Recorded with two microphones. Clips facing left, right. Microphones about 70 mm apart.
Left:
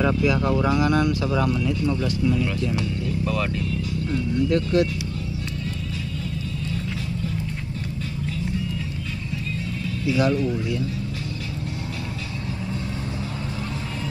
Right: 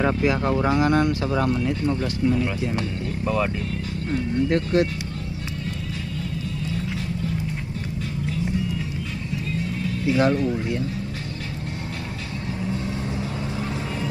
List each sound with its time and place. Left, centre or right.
0.0 s speech: right
4.1 s speech: right
10.1 s speech: right